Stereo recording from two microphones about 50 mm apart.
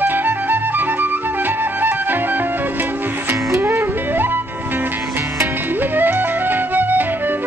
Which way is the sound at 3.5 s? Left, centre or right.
Right.